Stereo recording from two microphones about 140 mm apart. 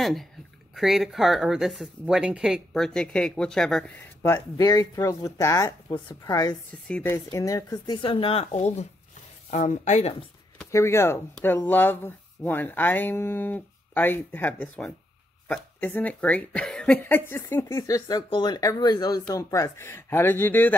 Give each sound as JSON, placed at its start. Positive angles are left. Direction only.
{"t": 0.0, "sound": "speech", "side_deg": 0}
{"t": 4.2, "sound": "speech", "side_deg": 20}
{"t": 6.9, "sound": "speech", "side_deg": 15}
{"t": 10.7, "sound": "speech", "side_deg": 20}